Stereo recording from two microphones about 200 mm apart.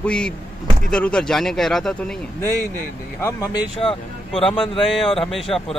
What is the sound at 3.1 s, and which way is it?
Speech, 15° left (ahead or behind).